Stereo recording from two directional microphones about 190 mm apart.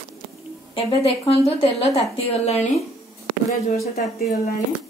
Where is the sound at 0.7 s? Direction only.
30° left (ahead or behind).